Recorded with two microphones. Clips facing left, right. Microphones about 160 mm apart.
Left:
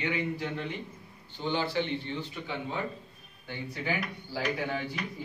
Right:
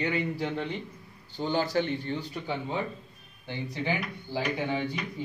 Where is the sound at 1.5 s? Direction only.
45° right (ahead or behind).